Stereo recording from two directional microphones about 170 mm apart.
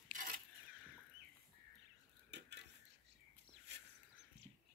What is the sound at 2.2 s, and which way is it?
Cutlery, 85° right.